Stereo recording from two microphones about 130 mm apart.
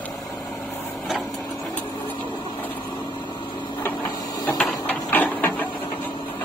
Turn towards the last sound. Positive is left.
turn(degrees=15)  # may be behind; listen again after turning